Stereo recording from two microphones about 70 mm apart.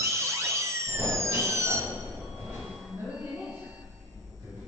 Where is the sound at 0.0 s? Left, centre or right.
Right.